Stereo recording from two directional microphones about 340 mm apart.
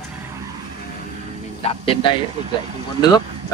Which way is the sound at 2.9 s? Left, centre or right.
Centre.